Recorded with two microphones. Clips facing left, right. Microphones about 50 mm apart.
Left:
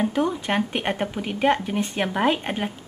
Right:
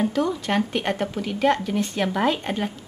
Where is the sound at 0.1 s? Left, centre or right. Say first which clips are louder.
Even; left.